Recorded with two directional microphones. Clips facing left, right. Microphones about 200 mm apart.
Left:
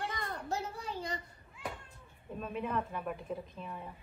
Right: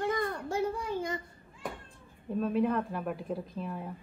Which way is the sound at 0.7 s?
50° right (ahead or behind).